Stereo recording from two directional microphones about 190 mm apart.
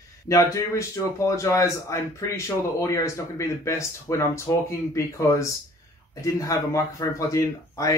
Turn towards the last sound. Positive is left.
turn(degrees=20)  # may be behind; listen again after turning